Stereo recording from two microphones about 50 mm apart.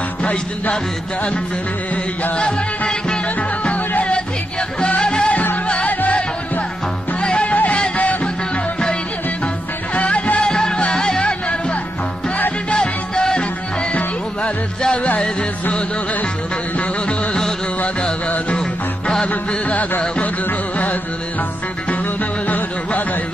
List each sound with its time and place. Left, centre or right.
0.2 s music: left
2.3 s music: left
5.9 s music: left
7.2 s music: left
9.9 s music: left
10.4 s music: centre
12.6 s music: centre
14.8 s music: left
19.2 s music: left